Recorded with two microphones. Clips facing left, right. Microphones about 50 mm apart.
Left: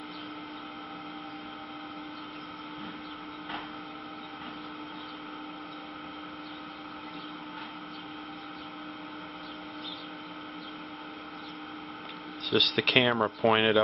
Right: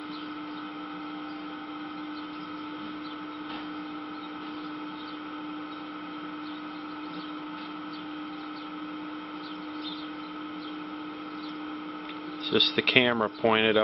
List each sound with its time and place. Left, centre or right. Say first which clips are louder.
12.5 s speech: right 1 dB; centre